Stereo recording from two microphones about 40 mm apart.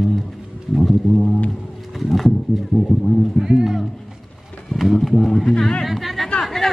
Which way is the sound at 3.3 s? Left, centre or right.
Centre.